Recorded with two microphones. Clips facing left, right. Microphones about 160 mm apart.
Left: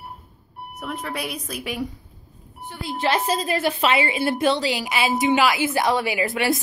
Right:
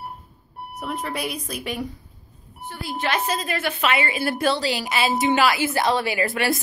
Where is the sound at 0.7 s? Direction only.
Centre (ahead or behind).